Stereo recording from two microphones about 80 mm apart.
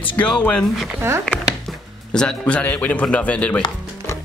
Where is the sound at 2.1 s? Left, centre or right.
Centre.